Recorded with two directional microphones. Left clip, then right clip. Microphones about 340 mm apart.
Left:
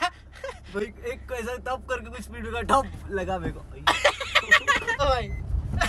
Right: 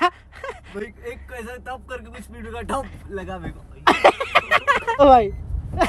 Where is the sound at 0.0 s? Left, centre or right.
Right.